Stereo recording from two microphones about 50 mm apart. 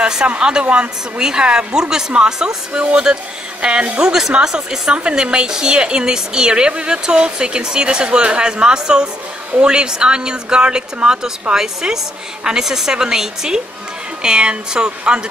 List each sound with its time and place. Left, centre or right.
0.0 s a woman's voice: centre